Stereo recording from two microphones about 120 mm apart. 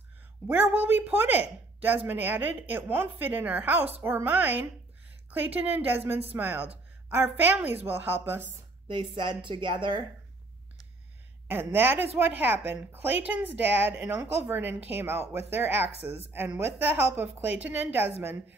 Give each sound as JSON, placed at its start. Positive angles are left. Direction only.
{"t": 0.5, "sound": "a woman's voice", "side_deg": -10}
{"t": 8.8, "sound": "a woman's voice", "side_deg": -40}
{"t": 11.4, "sound": "a woman's voice", "side_deg": -15}